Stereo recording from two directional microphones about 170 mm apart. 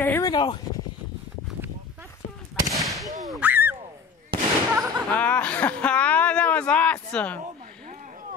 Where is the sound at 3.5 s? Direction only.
10° right (ahead or behind).